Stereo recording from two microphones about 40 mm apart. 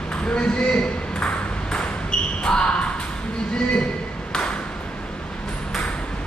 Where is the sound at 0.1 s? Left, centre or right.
Left.